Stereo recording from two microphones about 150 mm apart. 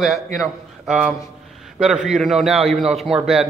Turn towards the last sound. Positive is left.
turn(degrees=-5)  # may be behind; listen again after turning